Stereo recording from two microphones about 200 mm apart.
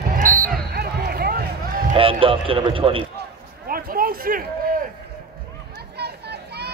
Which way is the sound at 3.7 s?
45° right (ahead or behind).